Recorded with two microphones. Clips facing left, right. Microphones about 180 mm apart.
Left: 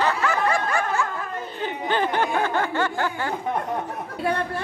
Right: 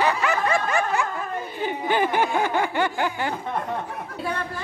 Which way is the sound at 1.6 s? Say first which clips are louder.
Right 1 dB; 10° right (ahead or behind).